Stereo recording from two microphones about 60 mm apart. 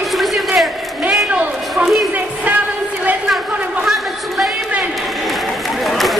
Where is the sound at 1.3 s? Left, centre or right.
Right.